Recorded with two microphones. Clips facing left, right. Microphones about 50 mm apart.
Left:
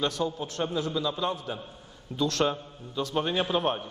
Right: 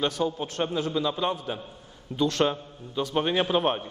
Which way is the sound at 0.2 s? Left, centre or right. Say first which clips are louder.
Right 2 dB; right.